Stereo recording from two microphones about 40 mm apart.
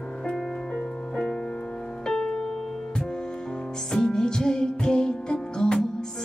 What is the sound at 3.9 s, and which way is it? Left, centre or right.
Music, centre.